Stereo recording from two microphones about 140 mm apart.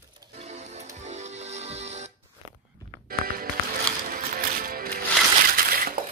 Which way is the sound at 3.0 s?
90° right.